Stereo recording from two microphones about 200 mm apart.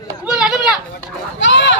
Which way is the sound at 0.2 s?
Centre (ahead or behind).